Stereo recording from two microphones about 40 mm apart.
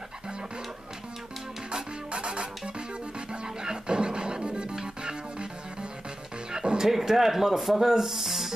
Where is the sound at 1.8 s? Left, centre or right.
Right.